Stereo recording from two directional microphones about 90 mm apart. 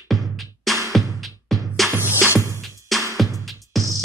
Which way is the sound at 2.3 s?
35° right (ahead or behind).